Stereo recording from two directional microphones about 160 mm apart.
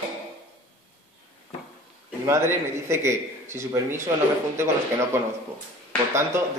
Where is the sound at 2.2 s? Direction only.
15° right (ahead or behind).